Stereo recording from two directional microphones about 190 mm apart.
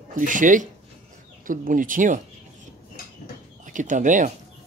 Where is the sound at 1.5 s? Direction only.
45° right (ahead or behind).